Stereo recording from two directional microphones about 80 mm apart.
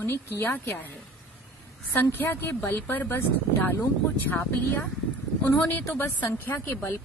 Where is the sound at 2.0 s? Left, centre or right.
Left.